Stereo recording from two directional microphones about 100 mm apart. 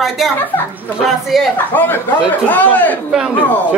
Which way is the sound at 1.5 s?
20° left (ahead or behind).